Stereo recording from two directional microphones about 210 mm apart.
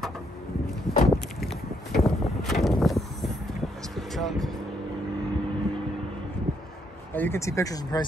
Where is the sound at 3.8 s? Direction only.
Centre (ahead or behind).